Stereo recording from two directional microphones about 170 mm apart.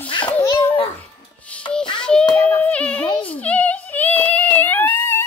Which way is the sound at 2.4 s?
5° left (ahead or behind).